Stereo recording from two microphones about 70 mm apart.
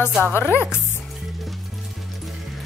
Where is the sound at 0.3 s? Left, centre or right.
Left.